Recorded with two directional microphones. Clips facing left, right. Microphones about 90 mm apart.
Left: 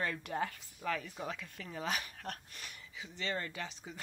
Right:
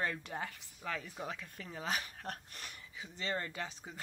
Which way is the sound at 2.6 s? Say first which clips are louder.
Even; 40° right (ahead or behind).